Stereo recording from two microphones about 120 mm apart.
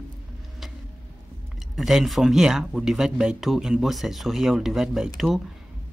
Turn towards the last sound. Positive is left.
turn(degrees=0)  # may be behind; listen again after turning